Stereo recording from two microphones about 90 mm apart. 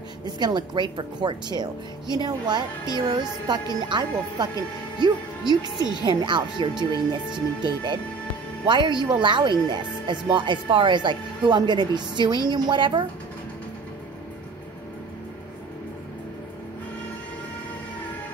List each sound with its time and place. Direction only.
0.2 s speech: 50° right (ahead or behind)
6.0 s speech: 60° right (ahead or behind)